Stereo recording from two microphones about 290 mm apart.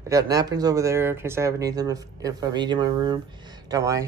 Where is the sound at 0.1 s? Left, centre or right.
Centre.